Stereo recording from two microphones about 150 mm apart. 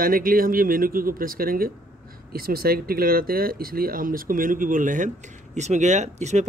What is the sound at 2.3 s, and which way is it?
Speech, 90° right.